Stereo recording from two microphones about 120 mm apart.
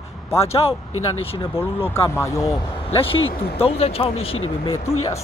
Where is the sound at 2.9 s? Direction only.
50° left (ahead or behind).